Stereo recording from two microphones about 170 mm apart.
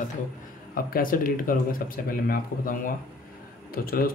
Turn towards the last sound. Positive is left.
turn(degrees=60)  # may be behind; listen again after turning